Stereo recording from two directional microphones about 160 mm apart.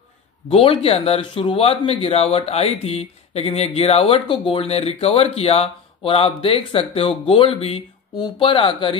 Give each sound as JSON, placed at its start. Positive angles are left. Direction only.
{"t": 0.5, "sound": "speech", "side_deg": 35}